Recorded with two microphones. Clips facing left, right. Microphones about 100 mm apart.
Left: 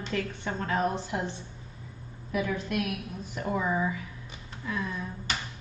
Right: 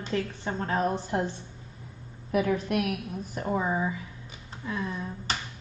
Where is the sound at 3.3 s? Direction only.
30° right (ahead or behind).